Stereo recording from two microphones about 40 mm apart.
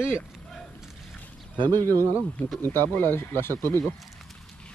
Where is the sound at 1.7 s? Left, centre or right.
Left.